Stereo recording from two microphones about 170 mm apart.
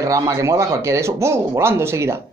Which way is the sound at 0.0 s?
20° right (ahead or behind).